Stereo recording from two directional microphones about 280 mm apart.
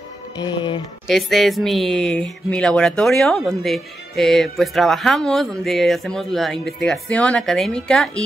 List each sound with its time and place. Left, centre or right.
0.4 s speech: centre
1.0 s speech: centre